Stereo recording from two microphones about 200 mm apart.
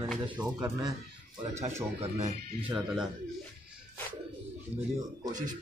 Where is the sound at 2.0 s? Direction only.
35° right (ahead or behind).